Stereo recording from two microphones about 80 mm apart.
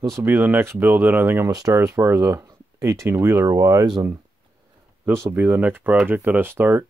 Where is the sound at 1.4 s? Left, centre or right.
Right.